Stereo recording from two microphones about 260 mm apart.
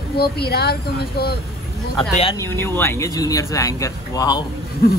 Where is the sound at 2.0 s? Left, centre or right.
Centre.